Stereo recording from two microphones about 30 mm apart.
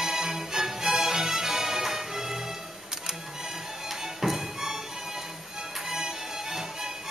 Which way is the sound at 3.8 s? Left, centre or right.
Centre.